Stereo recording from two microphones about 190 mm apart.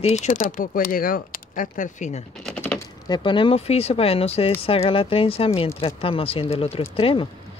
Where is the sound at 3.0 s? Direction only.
25° left (ahead or behind).